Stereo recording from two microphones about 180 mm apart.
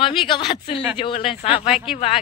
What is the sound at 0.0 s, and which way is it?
Speech, 30° left (ahead or behind).